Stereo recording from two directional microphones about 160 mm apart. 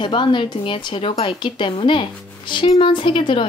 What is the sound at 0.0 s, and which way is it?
A woman's voice, 30° left (ahead or behind).